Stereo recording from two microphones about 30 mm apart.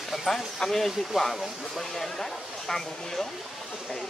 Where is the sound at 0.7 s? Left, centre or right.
Centre.